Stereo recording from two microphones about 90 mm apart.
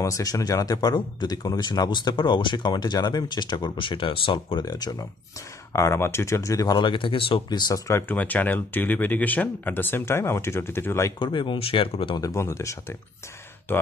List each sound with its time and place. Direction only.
0.0 s speech: 40° left (ahead or behind); by 4.6 s 70° left (ahead or behind)
4.6 s speech: 45° left (ahead or behind)
5.7 s speech: 30° left (ahead or behind)
6.8 s speech: 65° left (ahead or behind)
7.4 s speech: 50° left (ahead or behind)
7.9 s speech: 20° left (ahead or behind)
11.1 s speech: 60° left (ahead or behind); by 12.2 s 75° left (ahead or behind)
12.2 s speech: 35° left (ahead or behind)